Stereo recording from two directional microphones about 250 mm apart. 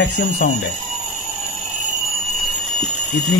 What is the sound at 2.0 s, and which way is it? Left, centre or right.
Alarm clock, centre.